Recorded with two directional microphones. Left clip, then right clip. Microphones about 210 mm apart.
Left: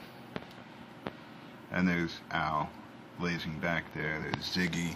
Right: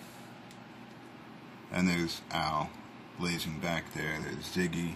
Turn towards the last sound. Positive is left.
turn(degrees=0)  # may be behind; listen again after turning